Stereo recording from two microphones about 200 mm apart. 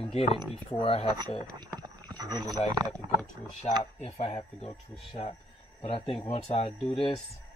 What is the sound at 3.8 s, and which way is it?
Speech, 30° left (ahead or behind).